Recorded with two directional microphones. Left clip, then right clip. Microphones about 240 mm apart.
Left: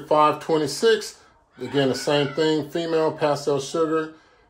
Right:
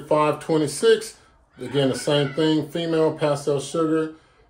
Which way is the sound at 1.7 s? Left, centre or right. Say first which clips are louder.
Even; left.